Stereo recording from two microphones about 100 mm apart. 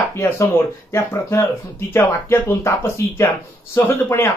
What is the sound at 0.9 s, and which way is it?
Speech, 30° left (ahead or behind).